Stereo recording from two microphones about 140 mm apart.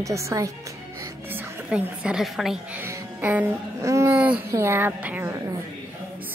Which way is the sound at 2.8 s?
15° right (ahead or behind).